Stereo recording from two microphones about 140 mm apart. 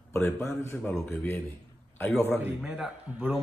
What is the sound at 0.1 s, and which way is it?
Speech, 15° left (ahead or behind).